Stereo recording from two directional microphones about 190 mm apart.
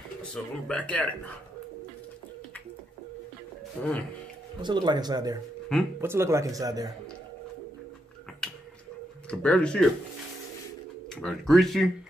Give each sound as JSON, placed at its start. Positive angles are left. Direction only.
{"t": 0.3, "sound": "speech", "side_deg": 5}
{"t": 3.8, "sound": "speech", "side_deg": 10}
{"t": 4.6, "sound": "speech", "side_deg": -25}
{"t": 8.4, "sound": "a sound", "side_deg": 5}
{"t": 9.3, "sound": "speech", "side_deg": 5}
{"t": 11.1, "sound": "speech", "side_deg": 0}